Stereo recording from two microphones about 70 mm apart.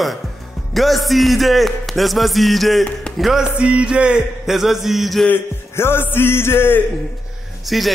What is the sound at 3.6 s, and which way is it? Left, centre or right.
A man's voice, centre.